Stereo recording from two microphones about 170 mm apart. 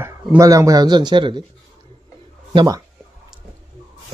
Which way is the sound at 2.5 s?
25° right (ahead or behind).